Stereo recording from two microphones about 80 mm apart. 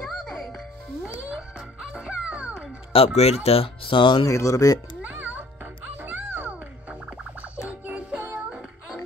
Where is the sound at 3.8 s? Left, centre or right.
Left.